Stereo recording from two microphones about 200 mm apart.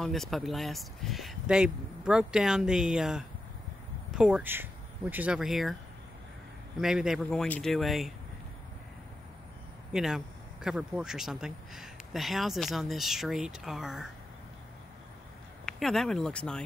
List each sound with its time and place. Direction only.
0.0 s a man's voice: centre (ahead or behind)
6.8 s a man's voice: centre (ahead or behind)
9.9 s a man's voice: centre (ahead or behind)
15.6 s speech: centre (ahead or behind)